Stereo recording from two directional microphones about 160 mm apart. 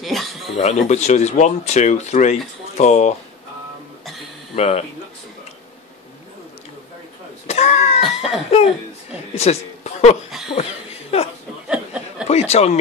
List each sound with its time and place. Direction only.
0.0 s a sound: centre (ahead or behind)
0.6 s speech: 45° left (ahead or behind)
4.6 s speech: 40° left (ahead or behind)
7.4 s cough: 45° left (ahead or behind)
8.0 s a sound: centre (ahead or behind)
9.3 s speech: 40° left (ahead or behind)
10.5 s laughter: 40° left (ahead or behind)
11.6 s chuckle: 5° right (ahead or behind)
12.3 s speech: 40° left (ahead or behind)